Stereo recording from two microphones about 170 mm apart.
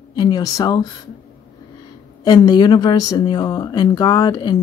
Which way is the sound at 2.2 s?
25° left (ahead or behind).